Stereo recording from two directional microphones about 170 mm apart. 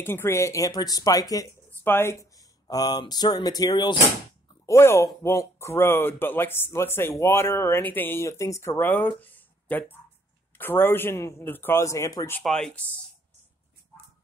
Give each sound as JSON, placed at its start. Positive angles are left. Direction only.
{"t": 0.0, "sound": "speech", "side_deg": 15}